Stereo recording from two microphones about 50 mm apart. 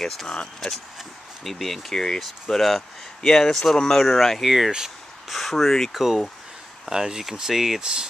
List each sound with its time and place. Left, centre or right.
0.6 s speech: centre
4.6 s speech: centre
5.3 s speech: centre
6.9 s speech: centre